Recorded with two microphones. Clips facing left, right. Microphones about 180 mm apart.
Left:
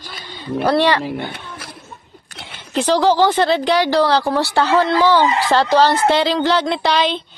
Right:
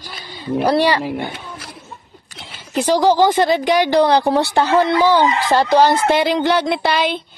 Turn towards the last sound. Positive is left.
turn(degrees=-10)  # may be behind; listen again after turning